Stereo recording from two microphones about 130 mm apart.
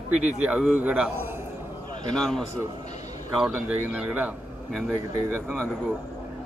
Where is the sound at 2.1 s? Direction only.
5° left (ahead or behind).